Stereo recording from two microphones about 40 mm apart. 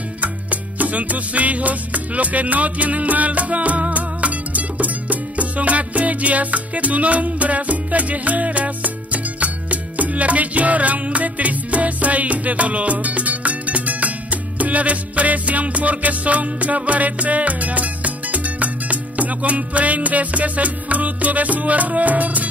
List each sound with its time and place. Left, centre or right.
0.2 s music: right